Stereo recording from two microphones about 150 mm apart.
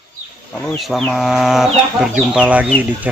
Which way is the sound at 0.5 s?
5° left (ahead or behind).